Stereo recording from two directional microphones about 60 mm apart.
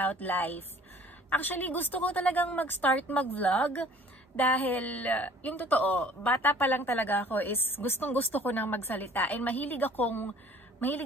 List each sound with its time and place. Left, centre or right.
0.0 s a woman's voice: left
9.1 s a woman's voice: left